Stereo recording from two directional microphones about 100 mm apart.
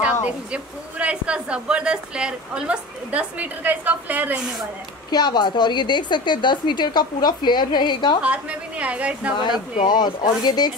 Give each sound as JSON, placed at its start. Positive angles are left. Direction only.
{"t": 0.0, "sound": "speech", "side_deg": -15}
{"t": 5.1, "sound": "a woman's voice", "side_deg": 45}
{"t": 8.2, "sound": "speech", "side_deg": -10}
{"t": 9.8, "sound": "a woman's voice", "side_deg": 45}